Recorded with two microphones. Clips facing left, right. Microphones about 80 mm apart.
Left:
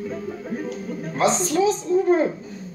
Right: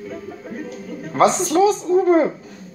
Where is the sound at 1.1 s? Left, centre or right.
Right.